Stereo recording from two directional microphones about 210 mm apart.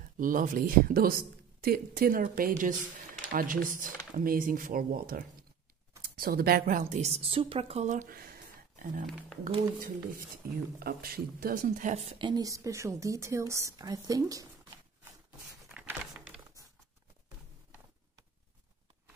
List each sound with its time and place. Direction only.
0.2 s speech: 40° right (ahead or behind)
6.8 s a woman's voice: 30° right (ahead or behind)
10.4 s a woman's voice: 45° right (ahead or behind); by 14.5 s 15° right (ahead or behind)
15.7 s a sound: centre (ahead or behind)